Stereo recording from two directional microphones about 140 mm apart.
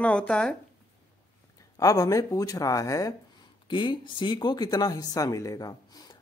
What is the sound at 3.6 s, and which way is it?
Speech, 35° left (ahead or behind).